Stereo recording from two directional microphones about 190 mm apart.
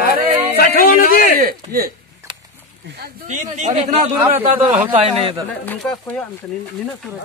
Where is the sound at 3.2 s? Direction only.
40° right (ahead or behind).